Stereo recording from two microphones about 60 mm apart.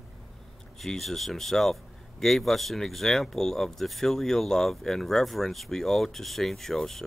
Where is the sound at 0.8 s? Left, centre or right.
Centre.